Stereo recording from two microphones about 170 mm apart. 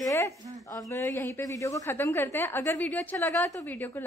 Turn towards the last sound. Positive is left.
turn(degrees=10)  # may be behind; listen again after turning